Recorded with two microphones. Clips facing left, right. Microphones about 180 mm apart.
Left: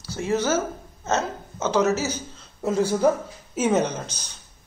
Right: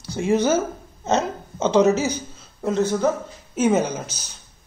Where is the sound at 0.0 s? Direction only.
15° right (ahead or behind).